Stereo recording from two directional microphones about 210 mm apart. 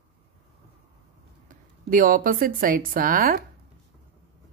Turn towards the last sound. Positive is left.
turn(degrees=-45)  # may be behind; listen again after turning